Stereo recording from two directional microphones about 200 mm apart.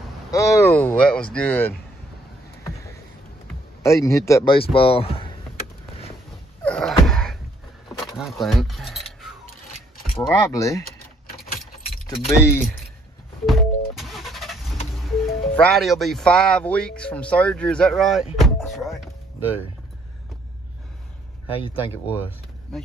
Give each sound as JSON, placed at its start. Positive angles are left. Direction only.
{"t": 0.3, "sound": "speech", "side_deg": 15}
{"t": 3.8, "sound": "speech", "side_deg": 15}
{"t": 4.6, "sound": "speech", "side_deg": 25}
{"t": 6.6, "sound": "a sound", "side_deg": 5}
{"t": 8.0, "sound": "speech", "side_deg": 0}
{"t": 10.2, "sound": "speech", "side_deg": 15}
{"t": 12.4, "sound": "speech", "side_deg": 10}
{"t": 13.5, "sound": "music", "side_deg": 0}
{"t": 15.0, "sound": "speech", "side_deg": 5}
{"t": 18.7, "sound": "a sound", "side_deg": 0}
{"t": 21.5, "sound": "speech", "side_deg": 25}
{"t": 22.1, "sound": "power windows", "side_deg": 10}